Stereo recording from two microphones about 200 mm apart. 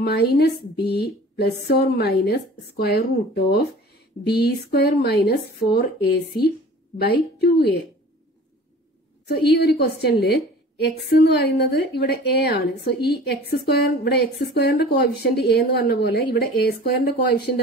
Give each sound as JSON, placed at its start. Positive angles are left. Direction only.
{"t": 0.0, "sound": "a woman's voice", "side_deg": 55}
{"t": 9.3, "sound": "a woman's voice", "side_deg": 55}